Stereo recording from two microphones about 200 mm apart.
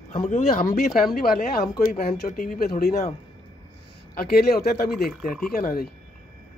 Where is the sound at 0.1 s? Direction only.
35° left (ahead or behind).